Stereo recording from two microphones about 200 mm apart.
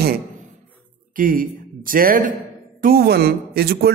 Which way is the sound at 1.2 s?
45° right (ahead or behind).